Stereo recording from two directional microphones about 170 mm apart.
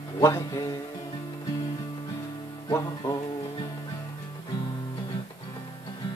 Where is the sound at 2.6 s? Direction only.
20° left (ahead or behind).